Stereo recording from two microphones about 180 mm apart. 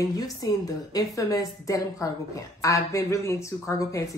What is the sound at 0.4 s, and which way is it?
A woman's voice, 20° left (ahead or behind).